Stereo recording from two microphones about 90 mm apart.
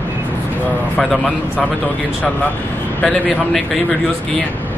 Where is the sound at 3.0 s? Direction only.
15° left (ahead or behind).